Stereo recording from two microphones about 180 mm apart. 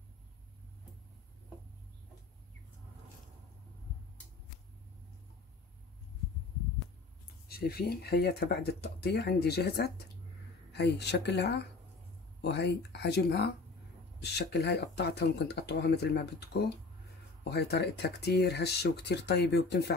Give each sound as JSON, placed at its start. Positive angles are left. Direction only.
{"t": 7.4, "sound": "speech", "side_deg": 60}